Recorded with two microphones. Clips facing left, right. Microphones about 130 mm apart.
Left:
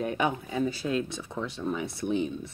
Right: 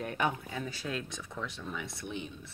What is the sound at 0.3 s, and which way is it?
Speech, 25° left (ahead or behind).